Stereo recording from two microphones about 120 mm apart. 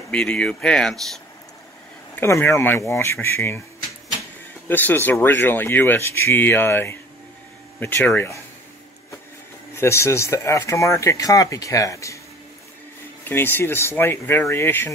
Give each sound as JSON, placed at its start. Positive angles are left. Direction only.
{"t": 0.1, "sound": "speech", "side_deg": 10}
{"t": 2.1, "sound": "speech", "side_deg": 20}
{"t": 4.6, "sound": "speech", "side_deg": 15}
{"t": 9.8, "sound": "speech", "side_deg": 20}
{"t": 13.2, "sound": "speech", "side_deg": 20}